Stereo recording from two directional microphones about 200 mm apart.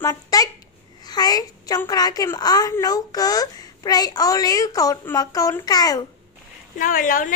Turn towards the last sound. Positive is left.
turn(degrees=45)  # may be behind; listen again after turning